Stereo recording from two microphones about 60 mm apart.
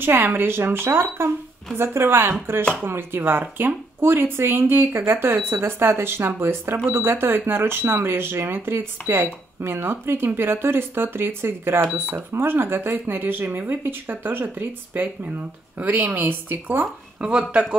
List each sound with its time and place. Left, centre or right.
0.0 s speech: right
16.8 s speech: centre